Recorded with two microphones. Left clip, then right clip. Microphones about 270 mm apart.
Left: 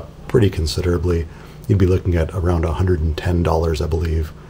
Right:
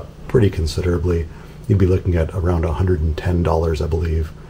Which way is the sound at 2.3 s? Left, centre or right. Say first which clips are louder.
Even; left.